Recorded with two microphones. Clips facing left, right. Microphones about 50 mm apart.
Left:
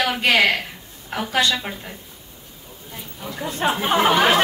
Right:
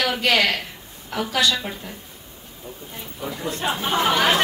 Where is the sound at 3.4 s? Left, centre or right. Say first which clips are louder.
Left 4 dB; left.